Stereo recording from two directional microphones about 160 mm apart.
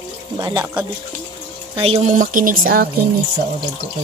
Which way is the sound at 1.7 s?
35° right (ahead or behind).